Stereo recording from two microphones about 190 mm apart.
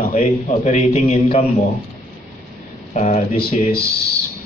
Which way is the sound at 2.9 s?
40° left (ahead or behind).